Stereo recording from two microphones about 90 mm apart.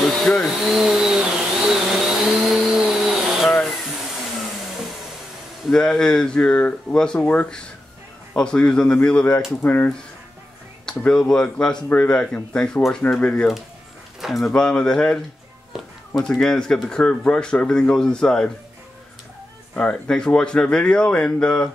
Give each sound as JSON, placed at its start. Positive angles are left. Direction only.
{"t": 0.2, "sound": "speech", "side_deg": 5}
{"t": 0.7, "sound": "vehicle", "side_deg": -5}
{"t": 5.7, "sound": "speech", "side_deg": 5}
{"t": 10.9, "sound": "speech", "side_deg": 10}
{"t": 15.7, "sound": "a sound", "side_deg": -5}
{"t": 16.2, "sound": "speech", "side_deg": 5}
{"t": 19.7, "sound": "speech", "side_deg": 15}